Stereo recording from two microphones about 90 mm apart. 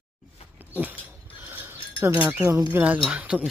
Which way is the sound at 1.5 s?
20° right (ahead or behind).